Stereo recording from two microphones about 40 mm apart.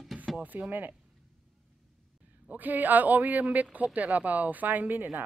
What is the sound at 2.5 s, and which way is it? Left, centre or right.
Speech, right.